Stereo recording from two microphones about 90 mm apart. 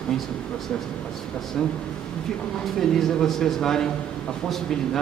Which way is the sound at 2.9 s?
5° left (ahead or behind).